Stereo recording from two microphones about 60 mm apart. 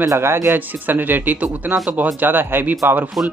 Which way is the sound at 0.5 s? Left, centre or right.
Right.